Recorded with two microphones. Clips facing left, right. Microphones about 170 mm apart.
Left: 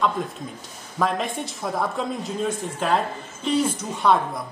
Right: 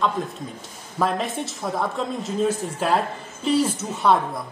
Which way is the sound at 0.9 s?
Centre (ahead or behind).